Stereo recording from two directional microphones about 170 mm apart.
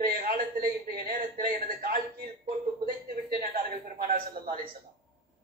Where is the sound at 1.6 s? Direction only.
60° right (ahead or behind).